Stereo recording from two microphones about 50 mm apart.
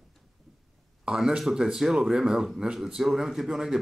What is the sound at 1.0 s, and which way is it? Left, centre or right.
A man's voice, centre.